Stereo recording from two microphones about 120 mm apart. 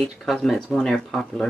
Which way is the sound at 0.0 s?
5° left (ahead or behind).